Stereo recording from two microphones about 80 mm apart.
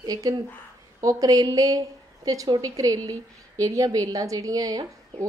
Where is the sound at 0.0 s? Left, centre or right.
Right.